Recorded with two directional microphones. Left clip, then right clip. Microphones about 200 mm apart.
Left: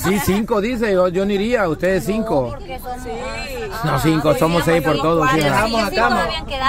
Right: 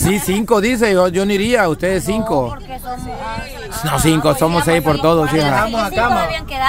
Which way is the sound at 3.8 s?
20° right (ahead or behind).